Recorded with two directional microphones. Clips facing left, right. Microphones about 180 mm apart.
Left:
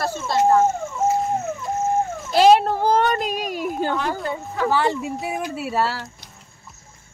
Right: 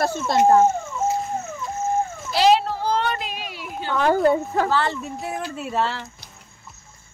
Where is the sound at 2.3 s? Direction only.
50° left (ahead or behind).